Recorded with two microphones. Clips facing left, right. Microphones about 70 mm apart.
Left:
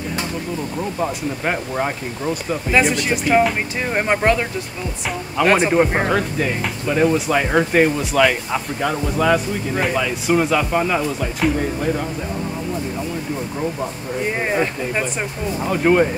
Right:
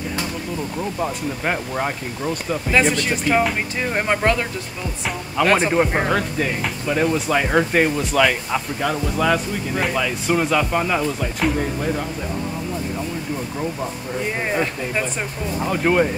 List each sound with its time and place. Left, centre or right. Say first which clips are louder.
0.9 s speech: left 2 dB; centre
2.7 s speech: left 1 dB; centre
5.4 s speech: left 2 dB; centre
14.5 s speech: left 2 dB; centre
15.6 s speech: left 2 dB; centre